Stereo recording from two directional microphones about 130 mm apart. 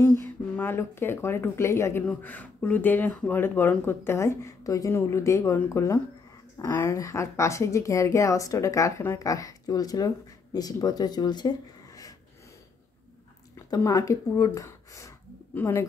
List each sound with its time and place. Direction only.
0.0 s a woman's voice: 15° left (ahead or behind)
13.7 s speech: 25° left (ahead or behind)